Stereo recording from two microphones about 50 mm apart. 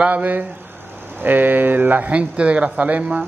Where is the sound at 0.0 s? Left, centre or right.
Right.